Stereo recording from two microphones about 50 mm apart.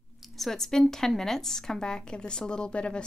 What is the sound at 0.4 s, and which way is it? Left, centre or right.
A woman's voice, centre.